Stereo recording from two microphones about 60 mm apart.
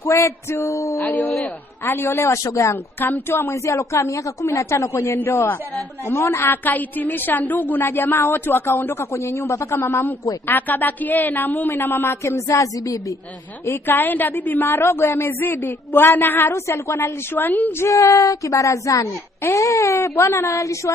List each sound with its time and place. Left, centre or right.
0.0 s speech: left
1.0 s speech: left
1.9 s a woman's voice: left
3.6 s speech: left
5.2 s a woman's voice: left
6.0 s a woman's voice: left
9.1 s a man's voice: left
12.4 s speech: left
13.7 s a woman's voice: left
16.4 s a man's voice: left
17.0 s a woman's voice: left
17.7 s speech: left